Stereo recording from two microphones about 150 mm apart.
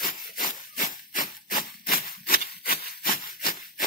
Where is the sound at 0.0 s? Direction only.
75° left (ahead or behind).